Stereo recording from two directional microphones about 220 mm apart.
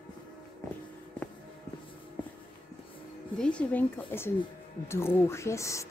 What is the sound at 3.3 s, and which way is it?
Speech, 5° left (ahead or behind).